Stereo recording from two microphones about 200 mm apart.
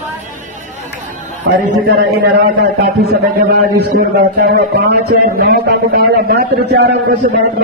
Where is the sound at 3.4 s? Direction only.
45° right (ahead or behind).